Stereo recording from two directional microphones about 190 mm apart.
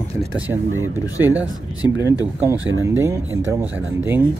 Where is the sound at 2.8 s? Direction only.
15° right (ahead or behind).